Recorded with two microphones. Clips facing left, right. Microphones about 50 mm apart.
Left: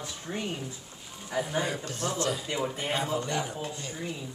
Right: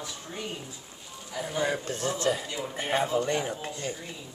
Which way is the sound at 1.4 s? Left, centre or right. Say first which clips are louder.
Even; centre.